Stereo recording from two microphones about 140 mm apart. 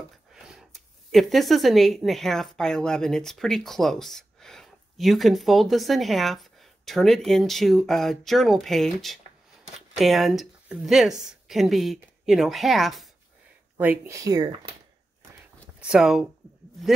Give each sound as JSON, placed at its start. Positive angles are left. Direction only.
{"t": 0.3, "sound": "speech", "side_deg": 0}
{"t": 13.7, "sound": "speech", "side_deg": -10}
{"t": 14.1, "sound": "speech", "side_deg": -25}
{"t": 15.8, "sound": "speech", "side_deg": -5}